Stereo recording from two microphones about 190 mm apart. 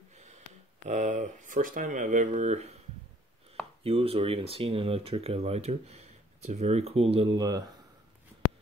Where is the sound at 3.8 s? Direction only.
30° right (ahead or behind).